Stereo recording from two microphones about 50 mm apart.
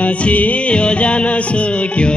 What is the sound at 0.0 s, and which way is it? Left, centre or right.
Music, left.